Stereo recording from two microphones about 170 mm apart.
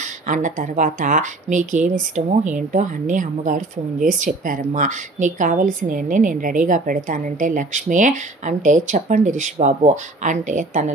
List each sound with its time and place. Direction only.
0.0 s a woman's voice: 50° right (ahead or behind)